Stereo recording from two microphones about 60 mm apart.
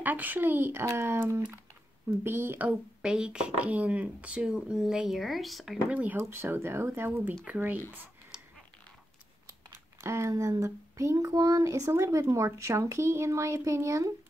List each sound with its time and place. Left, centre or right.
0.0 s speech: right
2.7 s speech: centre
5.9 s speech: right
6.1 s speech: right
10.0 s speech: right
11.1 s child singing: right
11.9 s speech: right